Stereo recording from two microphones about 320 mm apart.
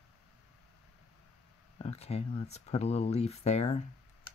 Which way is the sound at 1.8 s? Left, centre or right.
Centre.